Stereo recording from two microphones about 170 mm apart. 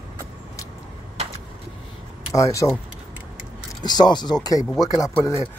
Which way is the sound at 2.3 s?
20° left (ahead or behind).